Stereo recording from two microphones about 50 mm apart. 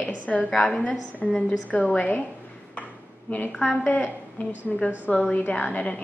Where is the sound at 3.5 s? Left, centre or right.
Left.